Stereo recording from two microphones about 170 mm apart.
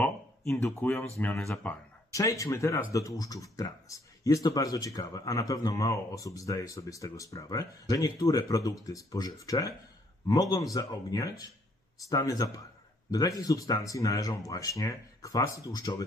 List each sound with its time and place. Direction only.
0.7 s speech: 10° left (ahead or behind)